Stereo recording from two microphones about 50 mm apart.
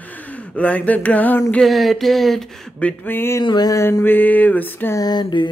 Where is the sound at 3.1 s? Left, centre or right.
Left.